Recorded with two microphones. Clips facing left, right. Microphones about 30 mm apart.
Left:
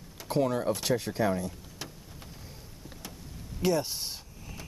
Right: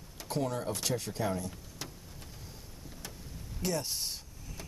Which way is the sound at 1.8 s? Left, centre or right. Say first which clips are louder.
Left 2 dB; centre.